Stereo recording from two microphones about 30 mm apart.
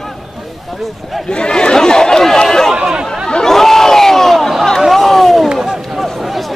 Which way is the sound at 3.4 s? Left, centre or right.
Centre.